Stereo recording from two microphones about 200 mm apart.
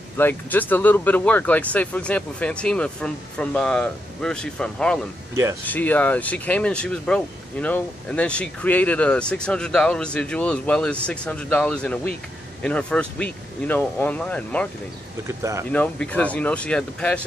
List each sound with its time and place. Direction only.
0.2 s speech: 10° left (ahead or behind)
5.3 s speech: 15° right (ahead or behind)
5.7 s speech: 10° left (ahead or behind)
15.2 s speech: 15° right (ahead or behind)
15.7 s speech: 5° left (ahead or behind)